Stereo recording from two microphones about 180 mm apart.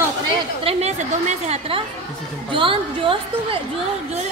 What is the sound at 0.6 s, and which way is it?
A man's voice, 40° right (ahead or behind).